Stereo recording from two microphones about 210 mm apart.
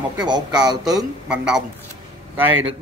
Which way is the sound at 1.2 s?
5° right (ahead or behind).